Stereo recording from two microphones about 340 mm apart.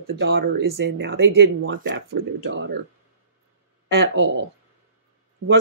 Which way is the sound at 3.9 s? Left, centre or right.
Right.